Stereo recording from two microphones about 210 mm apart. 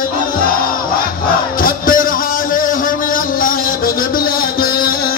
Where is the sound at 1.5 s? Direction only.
40° left (ahead or behind).